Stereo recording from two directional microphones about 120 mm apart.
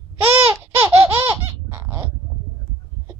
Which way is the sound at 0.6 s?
20° right (ahead or behind).